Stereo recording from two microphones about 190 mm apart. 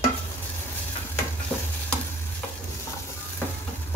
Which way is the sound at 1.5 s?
5° left (ahead or behind).